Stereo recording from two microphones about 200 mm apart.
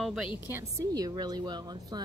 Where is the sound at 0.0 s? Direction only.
Centre (ahead or behind).